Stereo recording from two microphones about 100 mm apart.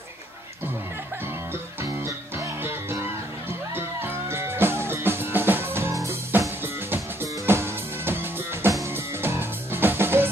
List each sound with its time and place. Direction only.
1.2 s music: 25° right (ahead or behind)